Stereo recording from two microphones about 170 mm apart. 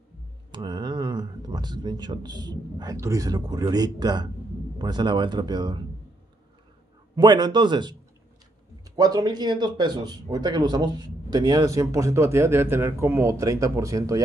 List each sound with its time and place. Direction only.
0.5 s speech: 25° right (ahead or behind)
7.2 s speech: 25° right (ahead or behind)